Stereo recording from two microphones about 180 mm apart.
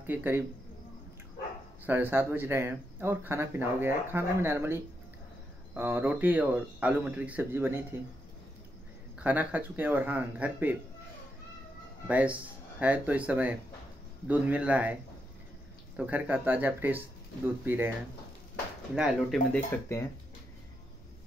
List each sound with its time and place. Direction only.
0.0 s speech: 10° right (ahead or behind)
1.9 s speech: 10° right (ahead or behind)
9.2 s speech: 10° right (ahead or behind)
12.1 s speech: 10° right (ahead or behind)
16.0 s speech: 10° right (ahead or behind)
18.9 s speech: centre (ahead or behind)
19.7 s speech: 15° left (ahead or behind)